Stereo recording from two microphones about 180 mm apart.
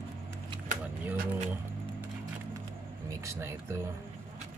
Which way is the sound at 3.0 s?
15° right (ahead or behind).